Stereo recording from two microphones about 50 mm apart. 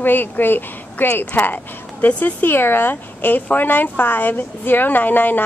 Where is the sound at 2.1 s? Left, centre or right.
Left.